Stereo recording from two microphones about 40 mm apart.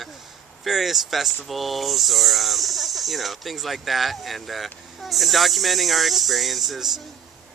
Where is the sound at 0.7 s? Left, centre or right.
Centre.